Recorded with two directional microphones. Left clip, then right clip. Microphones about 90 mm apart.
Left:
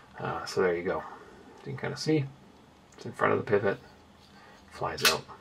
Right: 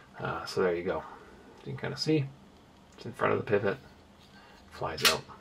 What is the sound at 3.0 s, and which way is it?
Speech, 15° left (ahead or behind).